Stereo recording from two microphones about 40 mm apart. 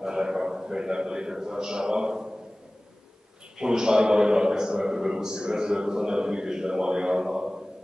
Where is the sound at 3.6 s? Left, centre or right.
Centre.